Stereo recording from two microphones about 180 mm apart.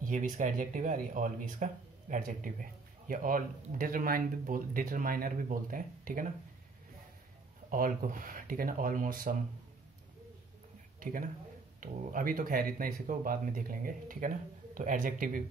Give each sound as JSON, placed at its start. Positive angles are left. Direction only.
{"t": 0.0, "sound": "speech", "side_deg": -45}
{"t": 7.7, "sound": "speech", "side_deg": -50}
{"t": 11.0, "sound": "a man's voice", "side_deg": -50}